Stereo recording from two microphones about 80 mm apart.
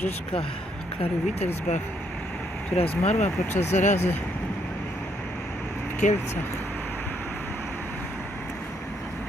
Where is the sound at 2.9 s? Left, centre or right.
Left.